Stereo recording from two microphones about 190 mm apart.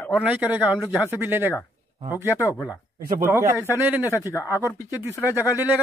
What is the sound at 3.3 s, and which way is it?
Speech, 10° right (ahead or behind).